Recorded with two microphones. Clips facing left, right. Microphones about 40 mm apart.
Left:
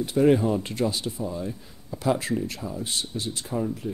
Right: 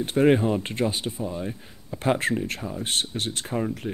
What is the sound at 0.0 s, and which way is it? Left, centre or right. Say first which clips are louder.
Speech: even; right.